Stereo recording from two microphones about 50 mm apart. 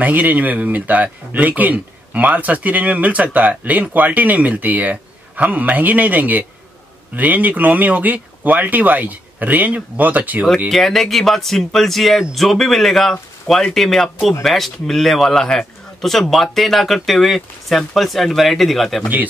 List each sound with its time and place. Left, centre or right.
0.0 s speech: right
10.7 s a man's voice: centre